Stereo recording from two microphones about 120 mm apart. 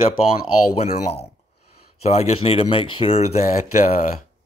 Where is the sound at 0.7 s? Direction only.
70° left (ahead or behind); by 4.2 s 90° left.